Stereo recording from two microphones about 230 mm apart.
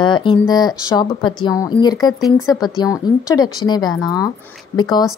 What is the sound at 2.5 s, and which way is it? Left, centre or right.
A woman's voice, centre.